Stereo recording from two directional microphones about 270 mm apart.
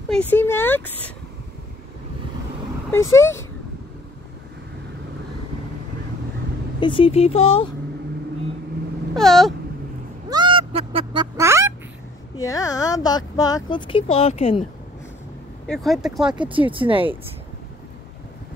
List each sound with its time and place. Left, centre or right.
0.1 s speech: centre
2.9 s speech: centre
6.8 s speech: centre
9.1 s speech: centre
10.3 s a sound: centre
11.3 s fowl: centre
12.4 s speech: centre
15.6 s speech: centre
16.3 s speech: centre